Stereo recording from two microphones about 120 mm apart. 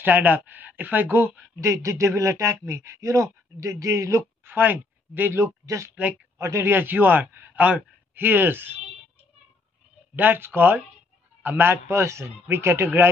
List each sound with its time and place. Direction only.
0.0 s speech: 15° right (ahead or behind)
5.9 s speech: 10° right (ahead or behind)
6.3 s a man's voice: 20° right (ahead or behind)
10.1 s speech: 15° right (ahead or behind)